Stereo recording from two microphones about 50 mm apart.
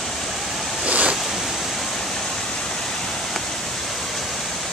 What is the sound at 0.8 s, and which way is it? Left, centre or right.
Waves, right.